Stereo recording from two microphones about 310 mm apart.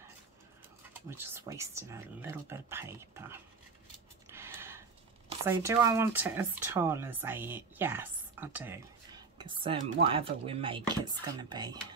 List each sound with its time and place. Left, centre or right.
1.1 s speech: centre
4.3 s a sound: centre
5.4 s speech: centre